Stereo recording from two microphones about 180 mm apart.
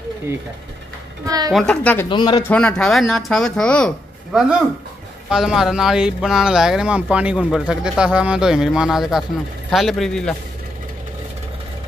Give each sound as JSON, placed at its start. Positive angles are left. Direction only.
{"t": 1.2, "sound": "a woman's voice", "side_deg": -20}
{"t": 1.5, "sound": "a woman's voice", "side_deg": 5}
{"t": 2.0, "sound": "speech", "side_deg": 25}
{"t": 2.4, "sound": "speech", "side_deg": 5}